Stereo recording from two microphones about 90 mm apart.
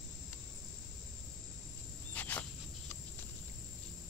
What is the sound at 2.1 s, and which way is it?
Cricket, 20° left (ahead or behind).